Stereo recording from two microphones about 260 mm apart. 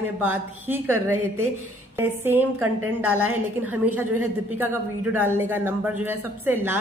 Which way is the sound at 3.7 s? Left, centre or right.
Centre.